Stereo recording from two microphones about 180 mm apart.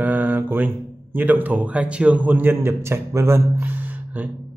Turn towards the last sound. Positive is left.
turn(degrees=-10)  # may be behind; listen again after turning